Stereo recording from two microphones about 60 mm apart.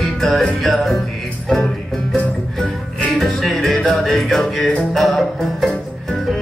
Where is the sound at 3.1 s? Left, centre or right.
Centre.